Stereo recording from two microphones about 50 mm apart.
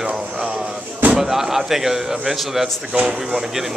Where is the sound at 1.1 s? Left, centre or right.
Centre.